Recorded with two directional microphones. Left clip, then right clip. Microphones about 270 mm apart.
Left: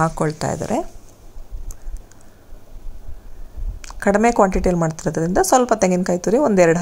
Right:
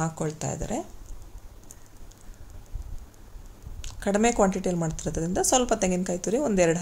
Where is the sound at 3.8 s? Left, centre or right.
Centre.